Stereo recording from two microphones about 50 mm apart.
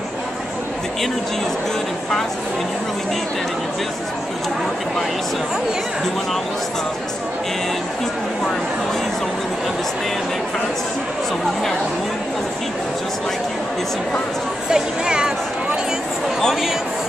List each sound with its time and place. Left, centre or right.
14.7 s speech: centre
16.3 s a man's voice: centre